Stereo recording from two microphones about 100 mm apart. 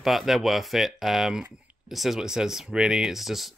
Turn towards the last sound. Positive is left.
turn(degrees=0)  # may be behind; listen again after turning